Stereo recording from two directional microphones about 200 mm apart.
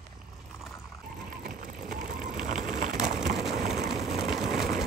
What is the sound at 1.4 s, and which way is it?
Crushing, 45° right (ahead or behind).